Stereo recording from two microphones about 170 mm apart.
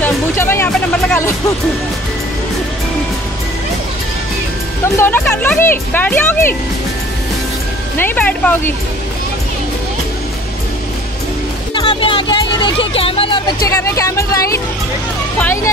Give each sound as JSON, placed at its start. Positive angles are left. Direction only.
{"t": 0.0, "sound": "music", "side_deg": 15}
{"t": 4.9, "sound": "speech", "side_deg": 10}
{"t": 8.0, "sound": "speech", "side_deg": 10}
{"t": 11.7, "sound": "a sound", "side_deg": 25}
{"t": 13.7, "sound": "speech", "side_deg": 20}